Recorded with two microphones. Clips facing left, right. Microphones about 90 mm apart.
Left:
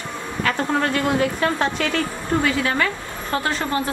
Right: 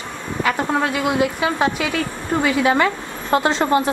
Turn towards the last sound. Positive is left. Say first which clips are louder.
# right 6 dB
turn(degrees=-25)  # may be behind; listen again after turning